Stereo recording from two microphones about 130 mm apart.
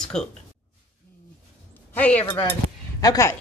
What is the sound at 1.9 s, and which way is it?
Speech, 10° left (ahead or behind).